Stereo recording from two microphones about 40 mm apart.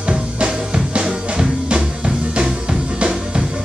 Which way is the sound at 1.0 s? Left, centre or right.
Centre.